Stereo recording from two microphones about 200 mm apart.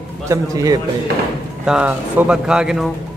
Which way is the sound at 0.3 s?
15° right (ahead or behind).